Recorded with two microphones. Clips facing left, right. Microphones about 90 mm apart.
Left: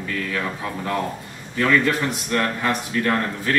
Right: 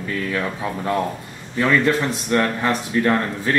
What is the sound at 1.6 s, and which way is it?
A man's voice, 25° right (ahead or behind).